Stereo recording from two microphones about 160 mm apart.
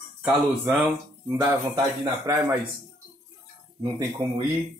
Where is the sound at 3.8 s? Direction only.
25° right (ahead or behind).